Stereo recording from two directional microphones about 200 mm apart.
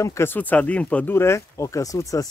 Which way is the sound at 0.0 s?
15° left (ahead or behind).